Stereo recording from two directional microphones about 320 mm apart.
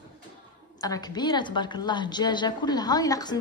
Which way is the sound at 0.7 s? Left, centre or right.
Centre.